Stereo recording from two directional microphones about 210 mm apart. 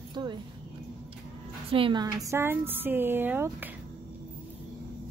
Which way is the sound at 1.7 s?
25° right (ahead or behind).